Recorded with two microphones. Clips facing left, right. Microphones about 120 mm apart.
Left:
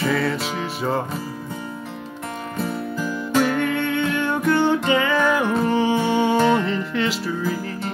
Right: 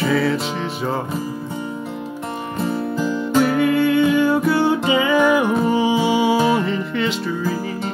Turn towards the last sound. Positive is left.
turn(degrees=0)  # may be behind; listen again after turning